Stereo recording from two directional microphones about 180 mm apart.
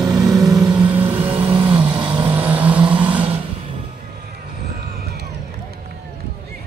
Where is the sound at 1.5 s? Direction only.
25° right (ahead or behind).